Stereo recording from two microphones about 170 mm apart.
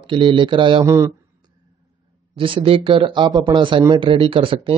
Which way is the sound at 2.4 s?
30° right (ahead or behind).